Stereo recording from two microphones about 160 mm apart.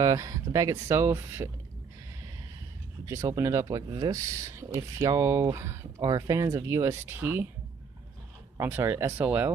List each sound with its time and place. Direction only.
0.0 s speech: 20° right (ahead or behind)
3.1 s speech: 20° right (ahead or behind)
8.5 s speech: 15° right (ahead or behind)